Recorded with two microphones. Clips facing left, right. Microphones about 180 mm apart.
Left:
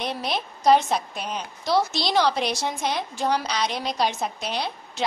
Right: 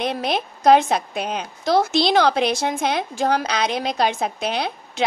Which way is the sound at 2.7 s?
75° right (ahead or behind).